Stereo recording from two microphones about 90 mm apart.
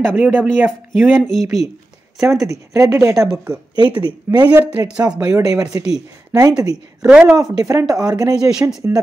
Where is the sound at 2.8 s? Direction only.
35° right (ahead or behind).